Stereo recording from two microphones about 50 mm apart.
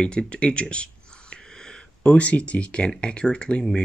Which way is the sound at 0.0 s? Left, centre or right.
Left.